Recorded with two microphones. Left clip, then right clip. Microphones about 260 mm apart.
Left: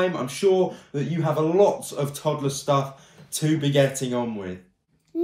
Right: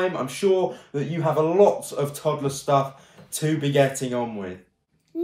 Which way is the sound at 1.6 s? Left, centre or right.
Centre.